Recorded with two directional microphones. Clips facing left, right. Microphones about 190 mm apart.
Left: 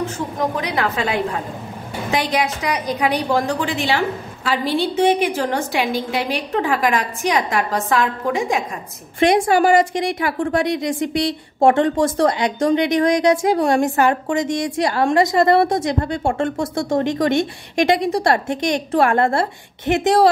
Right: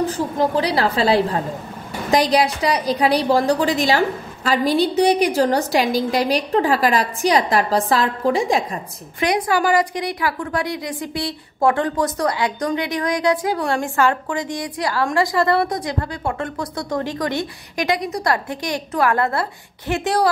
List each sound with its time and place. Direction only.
0.0 s a woman's voice: 35° right (ahead or behind)
9.5 s a woman's voice: 25° left (ahead or behind)